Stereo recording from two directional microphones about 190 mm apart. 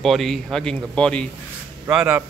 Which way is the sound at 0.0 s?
Centre (ahead or behind).